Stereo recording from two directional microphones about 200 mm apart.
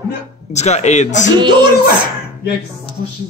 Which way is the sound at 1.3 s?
20° right (ahead or behind).